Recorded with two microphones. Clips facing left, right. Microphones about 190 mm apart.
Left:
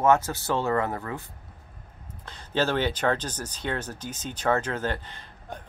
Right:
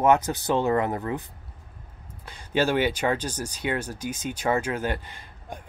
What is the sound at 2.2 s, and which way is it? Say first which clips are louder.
Speech: right 2 dB; 10° right (ahead or behind).